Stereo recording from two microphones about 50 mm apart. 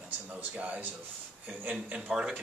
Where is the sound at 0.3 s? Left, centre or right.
Right.